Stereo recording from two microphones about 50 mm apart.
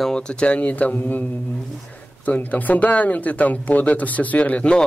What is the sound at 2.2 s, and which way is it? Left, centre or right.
Speech, left.